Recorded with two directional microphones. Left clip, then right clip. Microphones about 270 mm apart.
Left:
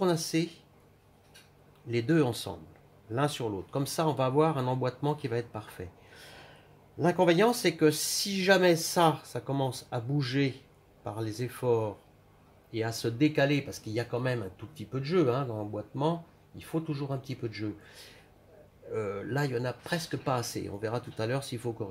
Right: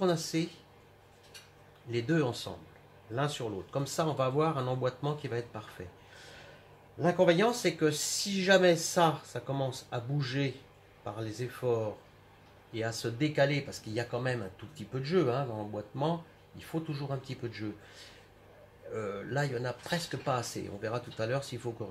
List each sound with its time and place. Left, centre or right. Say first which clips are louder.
0.0 s speech: left 2 dB; left
1.9 s speech: left 3 dB; left
7.0 s speech: left 1 dB; left
18.9 s speech: left 3 dB; left